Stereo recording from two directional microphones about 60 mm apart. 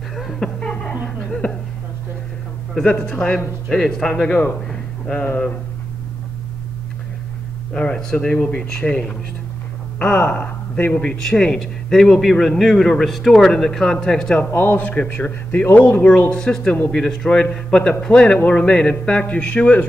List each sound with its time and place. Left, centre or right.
0.1 s laughter: centre
1.0 s a sound: centre
2.8 s a man's voice: centre
7.7 s a man's voice: centre
8.4 s a man's voice: left
10.9 s a man's voice: centre
14.4 s a man's voice: left